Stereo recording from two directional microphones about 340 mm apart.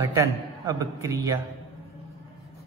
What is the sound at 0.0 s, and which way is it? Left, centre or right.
A man's voice, centre.